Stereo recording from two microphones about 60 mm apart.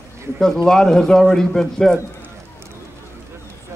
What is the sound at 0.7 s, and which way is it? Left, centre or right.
A man's voice, centre.